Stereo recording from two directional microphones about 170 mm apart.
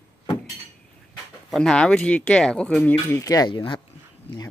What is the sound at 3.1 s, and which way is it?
Speech, 20° left (ahead or behind).